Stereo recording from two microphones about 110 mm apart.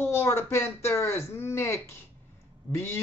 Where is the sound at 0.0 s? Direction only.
20° left (ahead or behind).